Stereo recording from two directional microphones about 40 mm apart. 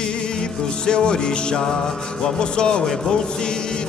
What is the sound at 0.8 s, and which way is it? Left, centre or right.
Music, left.